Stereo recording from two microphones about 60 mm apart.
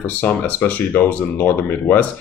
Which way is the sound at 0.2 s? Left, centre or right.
Left.